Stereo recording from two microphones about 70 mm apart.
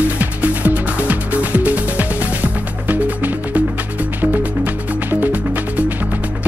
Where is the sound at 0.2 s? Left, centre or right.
Right.